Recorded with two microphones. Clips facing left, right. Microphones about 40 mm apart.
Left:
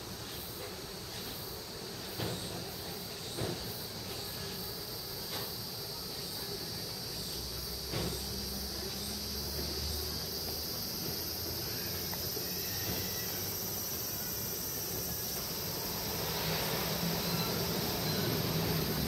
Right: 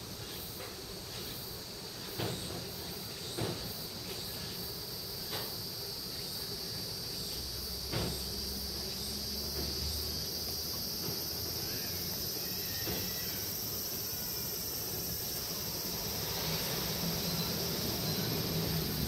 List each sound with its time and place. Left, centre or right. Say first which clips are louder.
16.1 s vehicle: left 3 dB; centre